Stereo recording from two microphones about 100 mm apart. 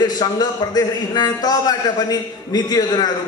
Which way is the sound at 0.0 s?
40° left (ahead or behind).